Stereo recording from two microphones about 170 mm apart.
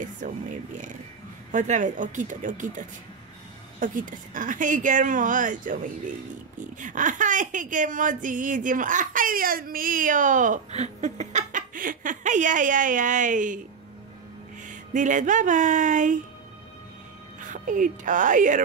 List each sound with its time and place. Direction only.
0.0 s speech: 50° right (ahead or behind)
3.8 s speech: 50° right (ahead or behind)
14.7 s speech: 50° right (ahead or behind)
17.4 s speech: 50° right (ahead or behind)